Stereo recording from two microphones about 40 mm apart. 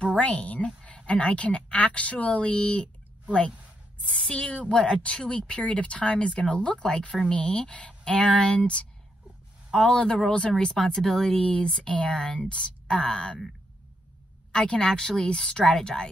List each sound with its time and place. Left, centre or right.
0.2 s a woman's voice: left
4.7 s speech: left
9.7 s a woman's voice: centre
11.3 s a woman's voice: centre
14.5 s a woman's voice: centre